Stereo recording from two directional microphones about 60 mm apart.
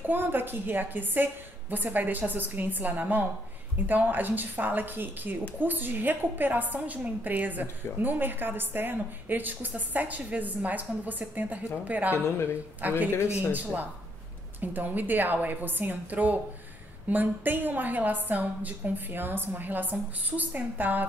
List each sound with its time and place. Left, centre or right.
0.0 s a woman's voice: right
13.1 s speech: left
14.6 s a woman's voice: right